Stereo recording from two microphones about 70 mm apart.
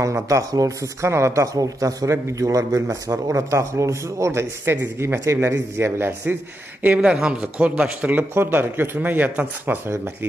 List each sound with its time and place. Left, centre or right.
0.0 s speech: right
6.8 s speech: right
7.5 s speech: right